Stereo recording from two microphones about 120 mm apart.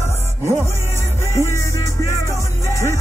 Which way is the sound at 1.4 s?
25° left (ahead or behind).